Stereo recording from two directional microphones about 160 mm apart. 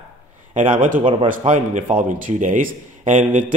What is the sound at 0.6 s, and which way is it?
A man's voice, 55° right (ahead or behind).